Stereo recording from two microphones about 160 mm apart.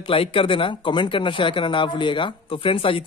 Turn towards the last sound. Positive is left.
turn(degrees=35)  # may be behind; listen again after turning